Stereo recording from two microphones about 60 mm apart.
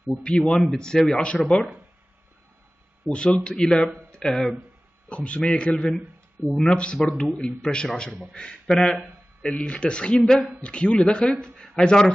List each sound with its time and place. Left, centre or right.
0.2 s speech: centre
3.1 s speech: left
5.1 s speech: centre
6.4 s speech: centre
6.7 s speech: centre